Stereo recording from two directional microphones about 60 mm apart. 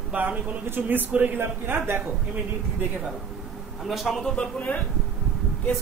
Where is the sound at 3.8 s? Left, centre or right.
Centre.